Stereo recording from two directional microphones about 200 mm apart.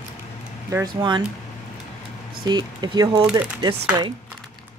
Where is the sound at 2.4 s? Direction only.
20° right (ahead or behind).